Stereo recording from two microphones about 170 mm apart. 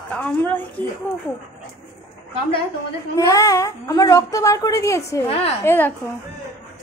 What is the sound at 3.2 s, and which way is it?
A child's voice, 20° left (ahead or behind).